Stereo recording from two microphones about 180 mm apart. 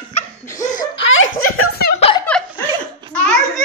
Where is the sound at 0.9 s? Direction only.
90° left.